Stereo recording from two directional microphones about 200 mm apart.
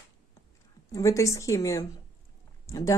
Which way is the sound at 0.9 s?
15° left (ahead or behind).